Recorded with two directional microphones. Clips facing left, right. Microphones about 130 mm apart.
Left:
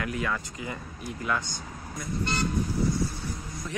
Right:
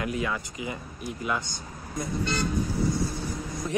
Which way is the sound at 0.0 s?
20° right (ahead or behind).